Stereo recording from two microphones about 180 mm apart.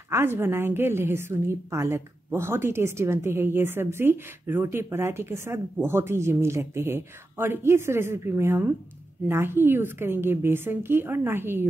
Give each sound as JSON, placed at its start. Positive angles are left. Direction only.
{"t": 0.1, "sound": "a woman's voice", "side_deg": -15}